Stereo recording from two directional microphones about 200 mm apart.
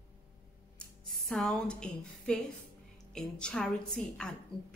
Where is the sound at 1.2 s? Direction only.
Centre (ahead or behind).